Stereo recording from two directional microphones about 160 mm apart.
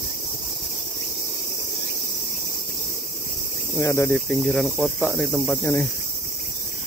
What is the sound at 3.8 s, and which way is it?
Cricket, 15° left (ahead or behind).